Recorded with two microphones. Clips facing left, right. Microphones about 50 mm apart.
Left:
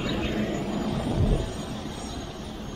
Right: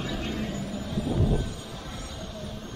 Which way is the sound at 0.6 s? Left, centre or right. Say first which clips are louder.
Left 6 dB; left.